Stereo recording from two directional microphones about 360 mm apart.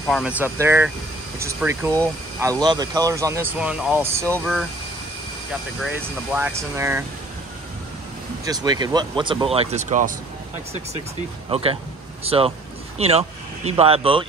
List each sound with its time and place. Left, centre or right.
0.1 s speech: centre
5.8 s speech: centre
8.5 s speech: centre
11.5 s speech: centre